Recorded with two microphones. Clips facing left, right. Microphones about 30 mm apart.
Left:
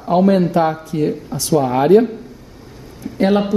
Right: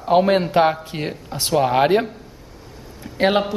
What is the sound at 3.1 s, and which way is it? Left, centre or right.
Speech, right.